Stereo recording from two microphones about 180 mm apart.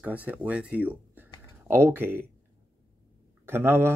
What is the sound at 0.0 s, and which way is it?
Speech, 10° right (ahead or behind).